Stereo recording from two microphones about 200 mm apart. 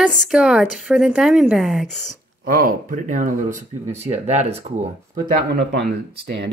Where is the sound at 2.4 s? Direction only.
45° right (ahead or behind).